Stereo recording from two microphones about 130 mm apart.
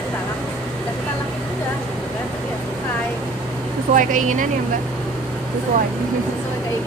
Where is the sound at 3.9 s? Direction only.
85° right.